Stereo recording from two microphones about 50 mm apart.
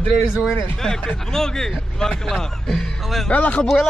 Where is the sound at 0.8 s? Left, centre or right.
Centre.